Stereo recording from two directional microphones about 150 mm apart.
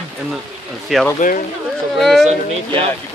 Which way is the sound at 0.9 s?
Centre (ahead or behind).